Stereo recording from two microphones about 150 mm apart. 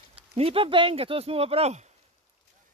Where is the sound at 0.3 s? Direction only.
40° right (ahead or behind).